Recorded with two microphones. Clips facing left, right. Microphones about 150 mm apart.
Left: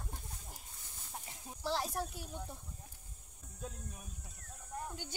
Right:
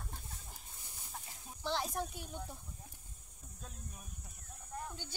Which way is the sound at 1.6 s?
5° left (ahead or behind).